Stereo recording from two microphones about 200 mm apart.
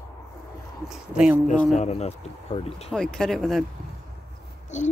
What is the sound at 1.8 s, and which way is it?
Speech, 35° left (ahead or behind).